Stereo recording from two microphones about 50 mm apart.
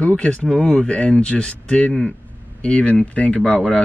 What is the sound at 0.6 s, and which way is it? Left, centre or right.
Speech, left.